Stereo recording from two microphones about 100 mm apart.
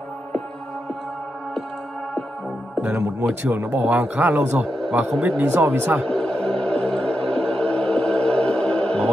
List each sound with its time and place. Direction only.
2.8 s speech: 20° right (ahead or behind)
4.6 s speech: 5° left (ahead or behind)
5.4 s speech: 20° right (ahead or behind)
6.0 s music: 10° left (ahead or behind)